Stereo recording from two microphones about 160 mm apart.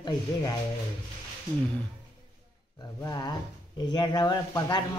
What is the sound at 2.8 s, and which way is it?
Speech, 25° left (ahead or behind).